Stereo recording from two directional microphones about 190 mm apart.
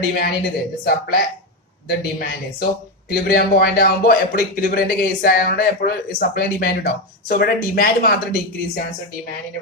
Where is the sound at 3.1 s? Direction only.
55° left (ahead or behind).